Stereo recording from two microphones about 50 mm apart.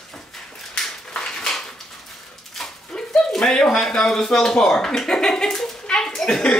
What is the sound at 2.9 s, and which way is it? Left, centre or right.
Bird, centre.